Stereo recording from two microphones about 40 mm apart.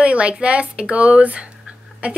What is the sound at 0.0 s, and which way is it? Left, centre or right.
A woman's voice, right.